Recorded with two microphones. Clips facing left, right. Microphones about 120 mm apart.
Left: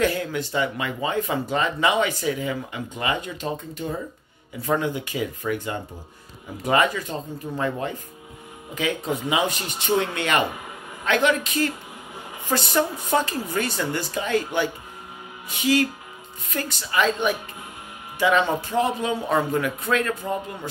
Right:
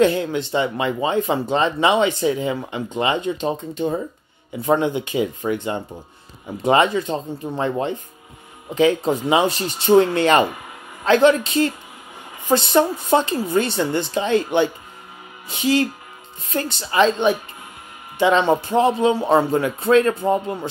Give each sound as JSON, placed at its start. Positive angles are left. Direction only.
{"t": 0.0, "sound": "speech", "side_deg": -25}